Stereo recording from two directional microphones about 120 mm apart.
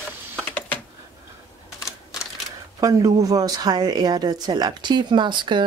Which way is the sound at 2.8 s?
30° right (ahead or behind).